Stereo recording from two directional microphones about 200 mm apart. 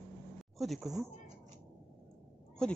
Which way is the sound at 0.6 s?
Centre (ahead or behind).